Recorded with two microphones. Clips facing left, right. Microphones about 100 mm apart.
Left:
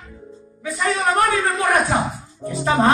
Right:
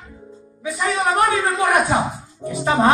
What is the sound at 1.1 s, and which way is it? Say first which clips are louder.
Speech: right 1 dB; 15° right (ahead or behind).